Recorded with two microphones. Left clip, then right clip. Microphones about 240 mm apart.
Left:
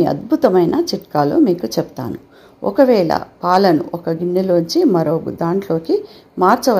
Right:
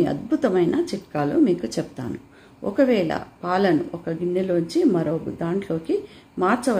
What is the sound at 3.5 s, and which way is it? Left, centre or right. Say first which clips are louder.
Speech: left 8 dB; centre.